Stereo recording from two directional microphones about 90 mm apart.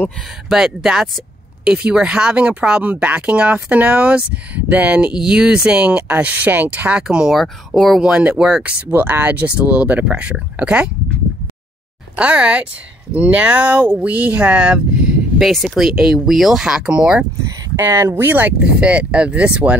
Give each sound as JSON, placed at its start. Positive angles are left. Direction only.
{"t": 0.5, "sound": "speech", "side_deg": -5}
{"t": 7.3, "sound": "speech", "side_deg": 5}
{"t": 8.0, "sound": "speech", "side_deg": -10}
{"t": 8.9, "sound": "speech", "side_deg": -20}
{"t": 12.2, "sound": "speech", "side_deg": -15}
{"t": 17.7, "sound": "speech", "side_deg": -30}